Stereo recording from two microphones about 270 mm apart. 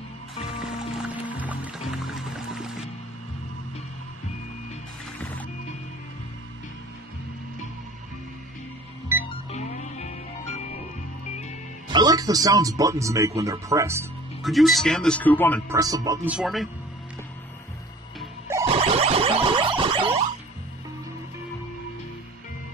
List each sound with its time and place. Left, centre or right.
0.7 s music: centre
9.5 s music: left
11.9 s speech: centre
15.7 s speech: centre
16.3 s a man's voice: centre
18.7 s a sound: right